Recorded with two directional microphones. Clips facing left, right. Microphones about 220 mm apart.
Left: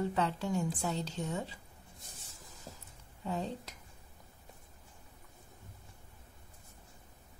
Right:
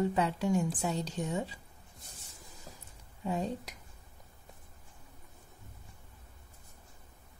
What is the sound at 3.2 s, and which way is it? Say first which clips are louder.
Speech: right 3 dB; 15° right (ahead or behind).